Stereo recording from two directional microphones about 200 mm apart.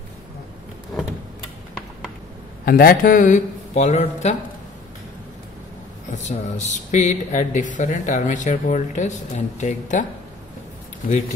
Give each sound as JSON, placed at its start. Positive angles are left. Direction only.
{"t": 2.6, "sound": "speech", "side_deg": 45}
{"t": 6.1, "sound": "speech", "side_deg": 35}